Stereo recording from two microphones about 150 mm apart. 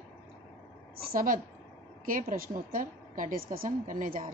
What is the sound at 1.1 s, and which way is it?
A woman's voice, 70° right (ahead or behind).